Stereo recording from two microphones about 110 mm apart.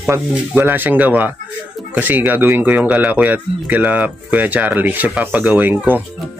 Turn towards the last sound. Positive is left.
turn(degrees=-15)  # may be behind; listen again after turning